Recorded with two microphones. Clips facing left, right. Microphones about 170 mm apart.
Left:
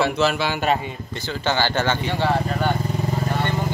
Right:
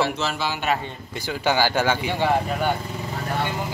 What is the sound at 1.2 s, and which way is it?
A man's voice, 10° right (ahead or behind).